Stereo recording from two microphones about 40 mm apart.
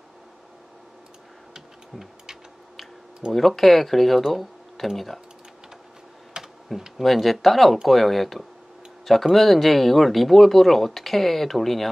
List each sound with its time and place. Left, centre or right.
1.5 s a sound: centre
3.3 s speech: centre
6.4 s typing: right
7.0 s speech: centre